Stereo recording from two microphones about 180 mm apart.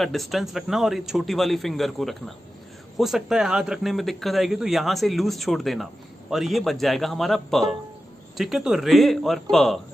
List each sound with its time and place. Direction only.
0.0 s a man's voice: centre (ahead or behind)